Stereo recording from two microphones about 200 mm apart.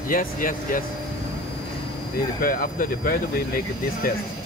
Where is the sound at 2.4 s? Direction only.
45° left (ahead or behind).